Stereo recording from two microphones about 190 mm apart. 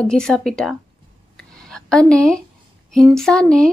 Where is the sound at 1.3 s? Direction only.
Centre (ahead or behind).